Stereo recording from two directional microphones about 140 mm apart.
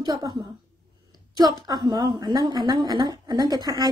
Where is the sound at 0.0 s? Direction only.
30° right (ahead or behind).